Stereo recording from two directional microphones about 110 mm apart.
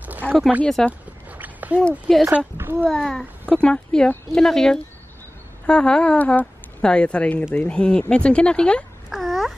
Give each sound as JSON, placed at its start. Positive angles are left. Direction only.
{"t": 0.2, "sound": "speech", "side_deg": 15}
{"t": 0.7, "sound": "speech", "side_deg": 5}
{"t": 1.4, "sound": "a sound", "side_deg": -15}
{"t": 1.8, "sound": "speech", "side_deg": 5}
{"t": 2.3, "sound": "a child's voice", "side_deg": -20}
{"t": 2.8, "sound": "a child's voice", "side_deg": 5}
{"t": 9.1, "sound": "babbling", "side_deg": 0}